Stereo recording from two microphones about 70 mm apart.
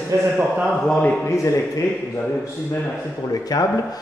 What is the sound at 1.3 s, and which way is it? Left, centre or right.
Speech, left.